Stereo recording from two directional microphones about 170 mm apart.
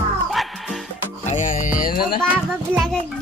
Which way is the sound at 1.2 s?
45° left (ahead or behind).